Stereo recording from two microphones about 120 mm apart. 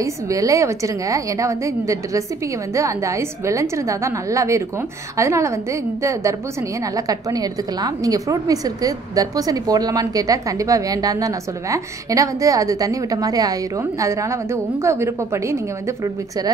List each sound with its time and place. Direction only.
0.0 s a woman's voice: 25° right (ahead or behind)